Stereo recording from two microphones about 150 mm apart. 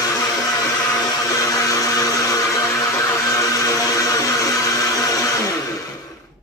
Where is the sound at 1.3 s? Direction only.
20° left (ahead or behind).